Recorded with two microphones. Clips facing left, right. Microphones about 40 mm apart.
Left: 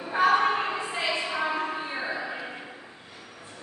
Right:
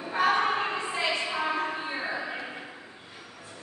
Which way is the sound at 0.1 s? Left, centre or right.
Centre.